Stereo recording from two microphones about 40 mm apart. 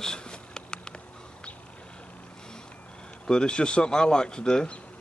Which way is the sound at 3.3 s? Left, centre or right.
Left.